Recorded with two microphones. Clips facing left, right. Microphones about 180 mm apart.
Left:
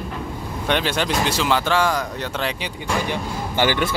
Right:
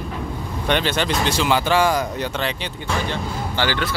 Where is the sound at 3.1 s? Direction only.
15° left (ahead or behind).